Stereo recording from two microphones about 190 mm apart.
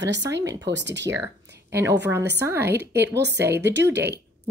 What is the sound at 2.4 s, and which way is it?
Speech, 10° right (ahead or behind).